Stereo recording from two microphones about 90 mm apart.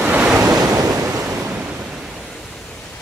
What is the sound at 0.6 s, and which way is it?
Waves, 40° right (ahead or behind).